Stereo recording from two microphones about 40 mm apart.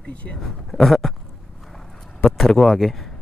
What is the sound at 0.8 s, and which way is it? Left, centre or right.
Speech, centre.